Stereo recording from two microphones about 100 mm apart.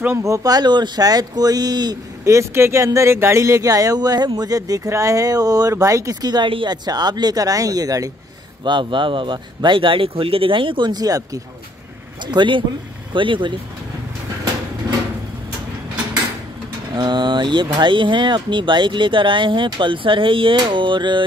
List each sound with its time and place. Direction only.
0.0 s speech: 25° right (ahead or behind); by 2.0 s 45° right (ahead or behind)
2.2 s speech: 30° right (ahead or behind)
8.6 s speech: 55° right (ahead or behind); by 11.4 s 35° right (ahead or behind)
12.3 s speech: 55° right (ahead or behind)
16.9 s speech: 50° right (ahead or behind)